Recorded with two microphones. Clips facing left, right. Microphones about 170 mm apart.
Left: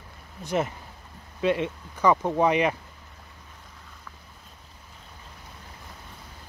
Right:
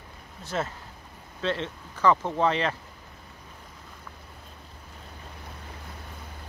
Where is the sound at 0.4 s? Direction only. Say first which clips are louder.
Left 4 dB; 15° left (ahead or behind).